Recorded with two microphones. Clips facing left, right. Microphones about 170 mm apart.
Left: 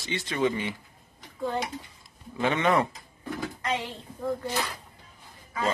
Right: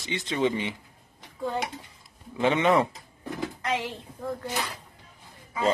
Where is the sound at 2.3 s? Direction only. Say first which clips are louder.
Right 2 dB; 20° right (ahead or behind).